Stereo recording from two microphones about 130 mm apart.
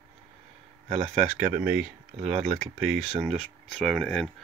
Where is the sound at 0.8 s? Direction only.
55° right (ahead or behind).